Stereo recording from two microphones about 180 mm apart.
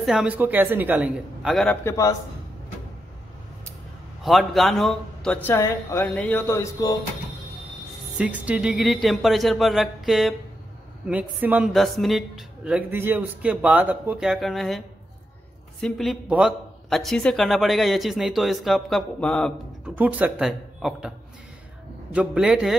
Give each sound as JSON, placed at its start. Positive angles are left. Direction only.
{"t": 0.0, "sound": "speech", "side_deg": -5}
{"t": 1.9, "sound": "speech", "side_deg": 20}
{"t": 4.2, "sound": "speech", "side_deg": 0}
{"t": 8.2, "sound": "a man's voice", "side_deg": -5}
{"t": 15.8, "sound": "a man's voice", "side_deg": 0}
{"t": 20.0, "sound": "speech", "side_deg": -10}
{"t": 22.1, "sound": "a man's voice", "side_deg": -5}